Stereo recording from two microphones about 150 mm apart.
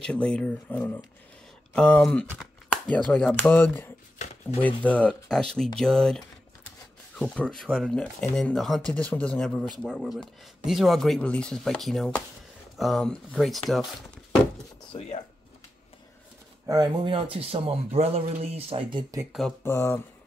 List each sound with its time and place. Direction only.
0.0 s speech: 5° left (ahead or behind)
14.9 s speech: 40° left (ahead or behind)
16.6 s a man's voice: 25° right (ahead or behind)
19.6 s speech: 20° left (ahead or behind)